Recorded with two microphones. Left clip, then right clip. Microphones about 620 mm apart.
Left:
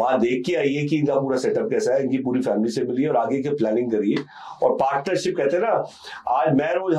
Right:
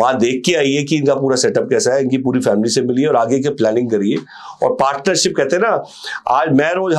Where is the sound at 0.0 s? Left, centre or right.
Right.